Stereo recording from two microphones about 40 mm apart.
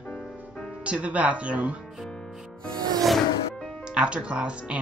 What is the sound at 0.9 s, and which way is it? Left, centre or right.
Speech, right.